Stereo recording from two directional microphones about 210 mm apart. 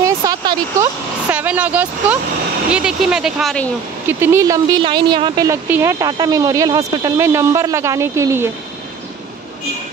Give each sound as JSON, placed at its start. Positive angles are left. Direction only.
{"t": 0.0, "sound": "a sound", "side_deg": -15}
{"t": 1.3, "sound": "speech", "side_deg": -5}
{"t": 4.1, "sound": "speech", "side_deg": -10}